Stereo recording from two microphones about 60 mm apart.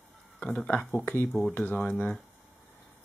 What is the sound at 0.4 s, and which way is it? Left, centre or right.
Speech, left.